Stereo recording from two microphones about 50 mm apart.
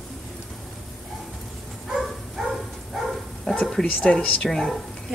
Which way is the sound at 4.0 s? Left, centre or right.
Centre.